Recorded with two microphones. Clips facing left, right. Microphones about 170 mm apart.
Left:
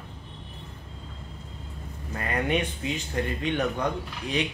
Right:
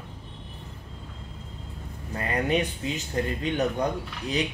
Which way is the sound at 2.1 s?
35° right (ahead or behind).